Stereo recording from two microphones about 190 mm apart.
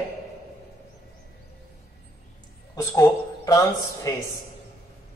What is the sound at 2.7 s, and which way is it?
A woman's voice, 15° left (ahead or behind).